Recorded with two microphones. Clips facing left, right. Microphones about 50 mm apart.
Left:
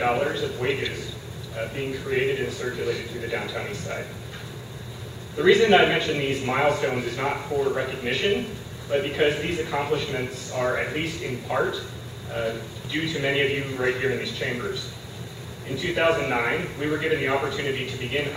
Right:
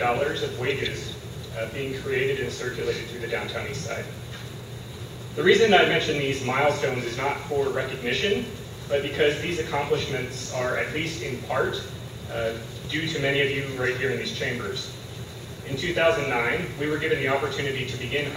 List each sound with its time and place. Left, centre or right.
0.0 s a man's voice: centre
5.4 s a man's voice: centre